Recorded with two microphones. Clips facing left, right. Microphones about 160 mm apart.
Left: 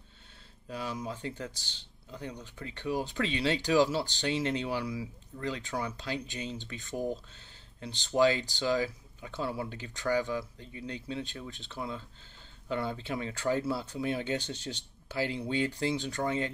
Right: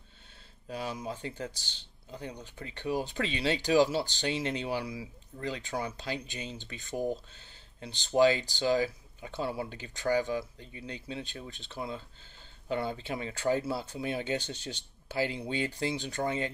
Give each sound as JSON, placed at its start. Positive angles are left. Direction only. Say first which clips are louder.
{"t": 0.7, "sound": "speech", "louder": "even", "side_deg": -20}